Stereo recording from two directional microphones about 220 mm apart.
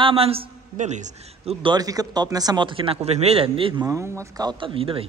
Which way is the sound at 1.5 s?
20° right (ahead or behind).